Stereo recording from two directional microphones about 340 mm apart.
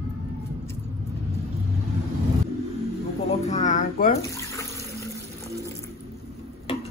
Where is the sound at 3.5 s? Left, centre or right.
Left.